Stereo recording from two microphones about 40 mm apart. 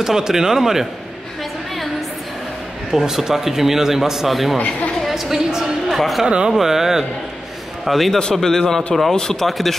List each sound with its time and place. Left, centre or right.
0.0 s a man's voice: centre
2.9 s a man's voice: centre
4.6 s a woman's voice: left
5.0 s a woman's voice: centre
5.9 s speech: centre
6.2 s speech: centre
6.5 s a man's voice: centre
8.4 s a man's voice: centre
9.5 s speech: centre